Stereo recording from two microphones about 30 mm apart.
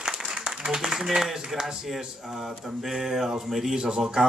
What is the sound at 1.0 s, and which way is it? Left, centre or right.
Speech, centre.